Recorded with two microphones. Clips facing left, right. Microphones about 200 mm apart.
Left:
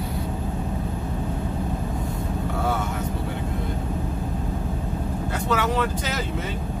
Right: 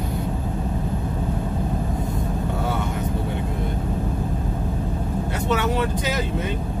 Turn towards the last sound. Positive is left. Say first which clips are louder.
# right 2 dB
turn(degrees=-20)  # may be behind; listen again after turning